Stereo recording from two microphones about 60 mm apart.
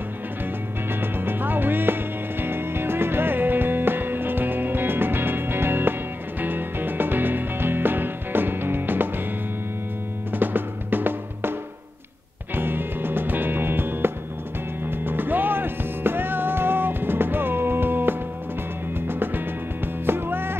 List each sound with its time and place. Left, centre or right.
1.0 s music: right
10.3 s music: right
12.5 s music: right